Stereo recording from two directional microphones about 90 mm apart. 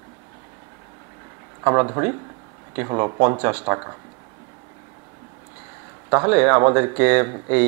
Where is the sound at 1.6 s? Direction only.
25° right (ahead or behind).